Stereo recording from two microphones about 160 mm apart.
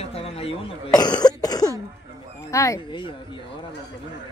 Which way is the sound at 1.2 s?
25° left (ahead or behind).